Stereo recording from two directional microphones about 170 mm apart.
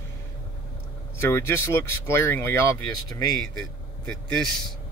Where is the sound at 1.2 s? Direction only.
15° left (ahead or behind).